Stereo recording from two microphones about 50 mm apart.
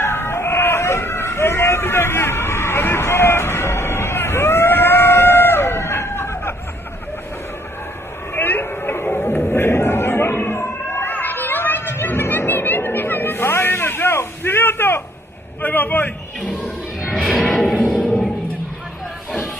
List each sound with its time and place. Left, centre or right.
0.0 s vehicle: left
8.4 s a sound: left
9.0 s music: left
9.5 s chatter: left
15.6 s a sound: left
17.5 s music: centre